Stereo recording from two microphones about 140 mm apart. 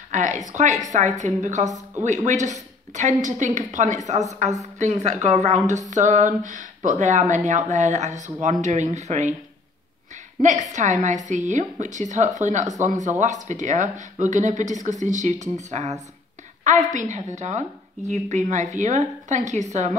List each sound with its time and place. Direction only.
0.1 s a sound: 60° right (ahead or behind)
0.5 s speech: 60° right (ahead or behind)
10.4 s speech: 60° right (ahead or behind)